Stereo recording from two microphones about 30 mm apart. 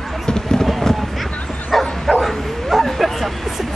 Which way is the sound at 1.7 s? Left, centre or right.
Centre.